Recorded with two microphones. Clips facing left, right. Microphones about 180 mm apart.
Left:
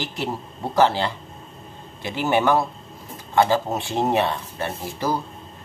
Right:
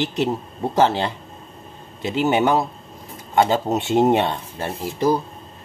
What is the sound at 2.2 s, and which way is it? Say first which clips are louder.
Speech: right 1 dB; 20° right (ahead or behind).